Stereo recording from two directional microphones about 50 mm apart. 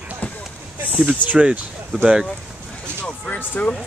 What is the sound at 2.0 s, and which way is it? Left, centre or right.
Speech, centre.